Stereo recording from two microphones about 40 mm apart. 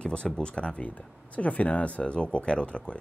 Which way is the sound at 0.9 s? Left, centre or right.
Left.